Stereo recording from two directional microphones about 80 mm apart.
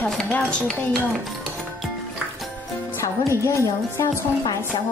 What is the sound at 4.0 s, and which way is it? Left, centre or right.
Speech, left.